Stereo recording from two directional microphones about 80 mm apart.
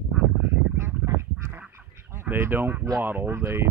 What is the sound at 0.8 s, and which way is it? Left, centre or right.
Duck, right.